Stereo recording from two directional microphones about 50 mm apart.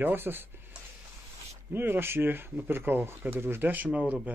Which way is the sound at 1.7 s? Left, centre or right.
Right.